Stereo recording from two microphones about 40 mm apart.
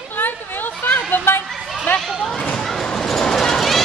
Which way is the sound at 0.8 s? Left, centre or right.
Left.